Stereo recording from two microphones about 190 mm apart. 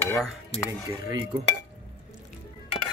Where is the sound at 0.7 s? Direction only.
15° right (ahead or behind).